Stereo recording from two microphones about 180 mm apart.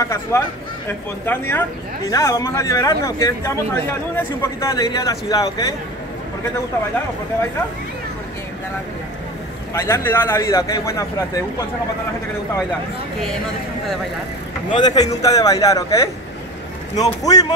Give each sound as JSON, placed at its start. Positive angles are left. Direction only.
{"t": 0.0, "sound": "speech", "side_deg": 15}
{"t": 9.8, "sound": "speech", "side_deg": 15}
{"t": 14.7, "sound": "speech", "side_deg": 25}